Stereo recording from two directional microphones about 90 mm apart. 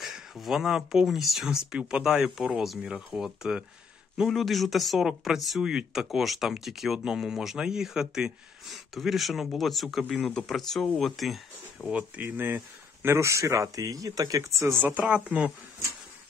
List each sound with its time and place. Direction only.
0.0 s speech: centre (ahead or behind)
11.9 s speech: 20° right (ahead or behind); by 14.7 s 40° right (ahead or behind)
14.8 s a woman's voice: 20° right (ahead or behind)